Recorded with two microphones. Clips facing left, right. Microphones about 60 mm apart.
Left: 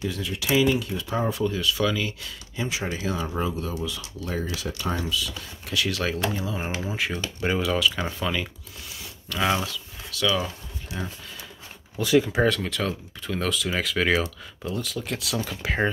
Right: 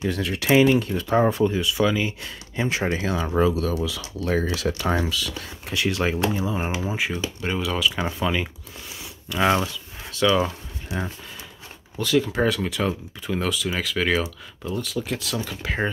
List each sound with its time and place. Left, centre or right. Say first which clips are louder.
0.0 s speech: right 4 dB; right
1.6 s speech: right 3 dB; centre
2.5 s speech: right 5 dB; right
5.0 s speech: right 1 dB; right
5.7 s speech: right 3 dB; right
7.6 s speech: even; centre
10.1 s a sound: right 5 dB; right
12.0 s speech: left 1 dB; centre
12.4 s speech: right 1 dB; centre